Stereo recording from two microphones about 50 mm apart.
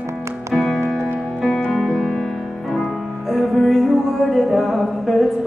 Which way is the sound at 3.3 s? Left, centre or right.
Centre.